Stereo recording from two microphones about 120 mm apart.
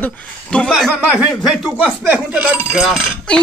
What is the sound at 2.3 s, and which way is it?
Speech, 10° right (ahead or behind).